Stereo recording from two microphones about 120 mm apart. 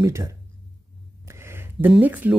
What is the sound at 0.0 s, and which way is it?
Speech, 25° right (ahead or behind).